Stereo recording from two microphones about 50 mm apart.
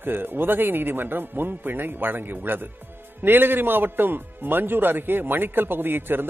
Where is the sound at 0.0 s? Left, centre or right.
Right.